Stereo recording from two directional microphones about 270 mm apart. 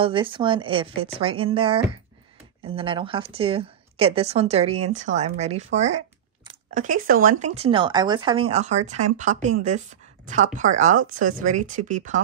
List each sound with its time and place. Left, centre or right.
0.0 s speech: centre